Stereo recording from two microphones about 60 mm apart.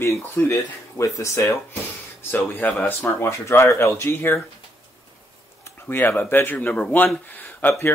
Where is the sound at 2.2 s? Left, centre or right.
Left.